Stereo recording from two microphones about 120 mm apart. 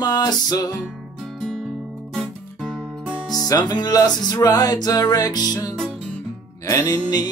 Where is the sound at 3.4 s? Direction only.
30° left (ahead or behind).